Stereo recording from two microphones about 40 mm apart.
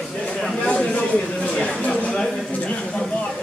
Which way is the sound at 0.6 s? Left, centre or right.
Left.